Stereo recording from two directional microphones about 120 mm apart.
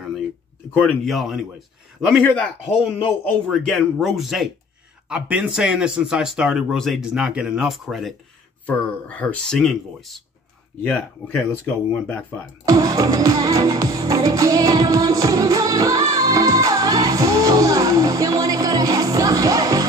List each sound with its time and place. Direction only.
1.0 s a man's voice: centre (ahead or behind)
3.4 s speech: centre (ahead or behind)
8.6 s speech: 10° left (ahead or behind)
10.8 s speech: 15° left (ahead or behind)
12.6 s music: 30° right (ahead or behind)